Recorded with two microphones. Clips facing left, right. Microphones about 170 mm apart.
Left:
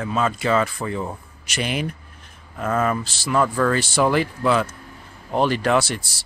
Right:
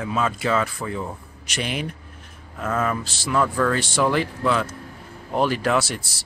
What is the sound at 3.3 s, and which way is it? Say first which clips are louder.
Speech: left 1 dB; 15° left (ahead or behind).